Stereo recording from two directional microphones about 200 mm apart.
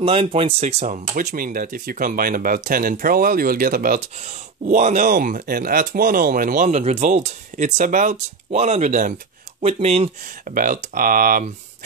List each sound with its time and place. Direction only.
0.0 s speech: 30° right (ahead or behind)
10.5 s speech: 45° right (ahead or behind)